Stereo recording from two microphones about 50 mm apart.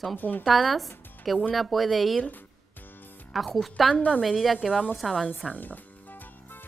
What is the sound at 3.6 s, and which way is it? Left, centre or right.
A woman's voice, centre.